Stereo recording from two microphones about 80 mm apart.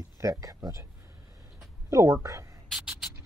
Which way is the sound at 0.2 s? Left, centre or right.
Right.